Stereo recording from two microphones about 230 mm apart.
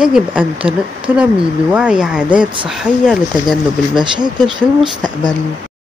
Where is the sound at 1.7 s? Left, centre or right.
Centre.